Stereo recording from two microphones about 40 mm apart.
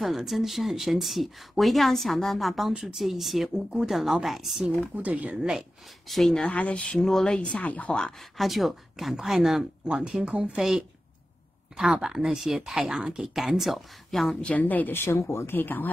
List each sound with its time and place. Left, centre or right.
0.0 s speech: centre
4.9 s speech: right
5.4 s speech: centre
6.0 s speech: centre
6.4 s speech: left
8.4 s speech: centre
9.8 s speech: right
10.6 s speech: centre
14.5 s speech: left
14.9 s speech: left
15.5 s speech: left